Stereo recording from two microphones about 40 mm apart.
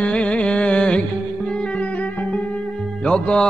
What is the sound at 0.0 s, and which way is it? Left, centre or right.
Music, left.